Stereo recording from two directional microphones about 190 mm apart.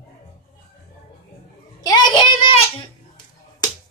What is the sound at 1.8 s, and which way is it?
Child singing, 20° left (ahead or behind).